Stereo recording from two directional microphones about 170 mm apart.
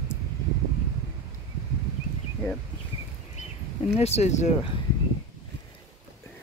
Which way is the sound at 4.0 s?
40° left (ahead or behind).